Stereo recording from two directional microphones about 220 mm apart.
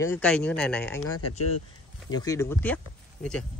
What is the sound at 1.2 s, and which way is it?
Speech, 90° left.